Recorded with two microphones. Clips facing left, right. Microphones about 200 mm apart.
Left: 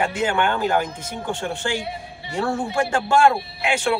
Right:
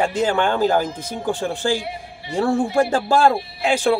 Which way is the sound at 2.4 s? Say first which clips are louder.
Right 5 dB; 35° right (ahead or behind).